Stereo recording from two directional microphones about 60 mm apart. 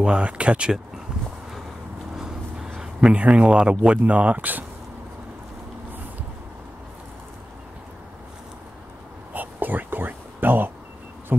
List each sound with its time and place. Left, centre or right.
0.0 s speech: centre
2.1 s a sound: centre
3.1 s speech: right
9.3 s whispering: right